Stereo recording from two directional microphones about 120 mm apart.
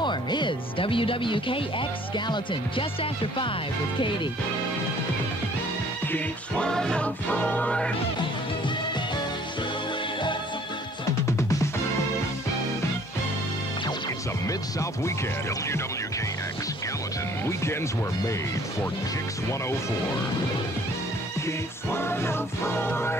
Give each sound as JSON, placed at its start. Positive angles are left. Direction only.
{"t": 0.0, "sound": "speech", "side_deg": 40}
{"t": 6.1, "sound": "music", "side_deg": 10}
{"t": 11.2, "sound": "music", "side_deg": 25}
{"t": 14.5, "sound": "music", "side_deg": 25}
{"t": 21.5, "sound": "music", "side_deg": 20}